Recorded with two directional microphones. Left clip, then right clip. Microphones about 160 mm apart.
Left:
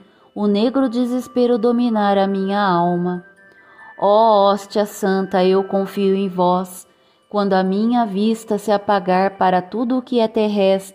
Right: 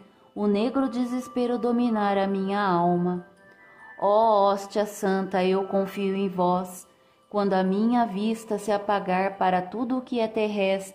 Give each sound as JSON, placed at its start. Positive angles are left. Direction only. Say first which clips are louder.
{"t": 0.4, "sound": "a woman's voice", "louder": "left 7 dB", "side_deg": 35}
{"t": 5.9, "sound": "music", "louder": "left 9 dB", "side_deg": 30}
{"t": 7.3, "sound": "a woman's voice", "louder": "left 7 dB", "side_deg": 30}